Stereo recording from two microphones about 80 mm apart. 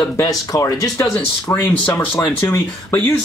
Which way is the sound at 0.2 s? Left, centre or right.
Left.